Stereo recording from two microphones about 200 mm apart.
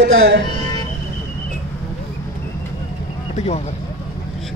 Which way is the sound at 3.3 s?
35° left (ahead or behind).